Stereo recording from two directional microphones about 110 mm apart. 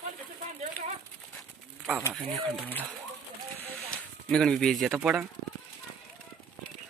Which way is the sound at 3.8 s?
5° left (ahead or behind).